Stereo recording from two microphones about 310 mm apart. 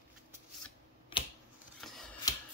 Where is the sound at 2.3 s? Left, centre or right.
Centre.